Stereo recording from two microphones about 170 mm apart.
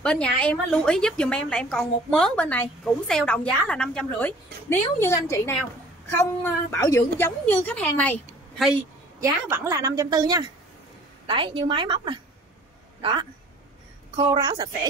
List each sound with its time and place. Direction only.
0.0 s a woman's voice: 5° left (ahead or behind)
9.2 s a woman's voice: 20° right (ahead or behind)